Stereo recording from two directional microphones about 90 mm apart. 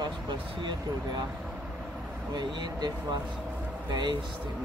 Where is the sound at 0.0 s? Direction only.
70° right (ahead or behind).